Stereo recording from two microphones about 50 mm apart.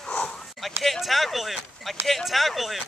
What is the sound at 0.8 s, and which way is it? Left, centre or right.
Speech, centre.